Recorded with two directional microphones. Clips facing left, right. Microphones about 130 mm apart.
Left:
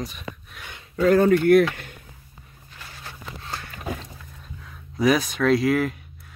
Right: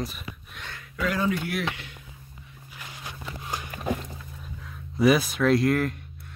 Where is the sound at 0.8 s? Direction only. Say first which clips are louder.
Left 9 dB; 40° left (ahead or behind).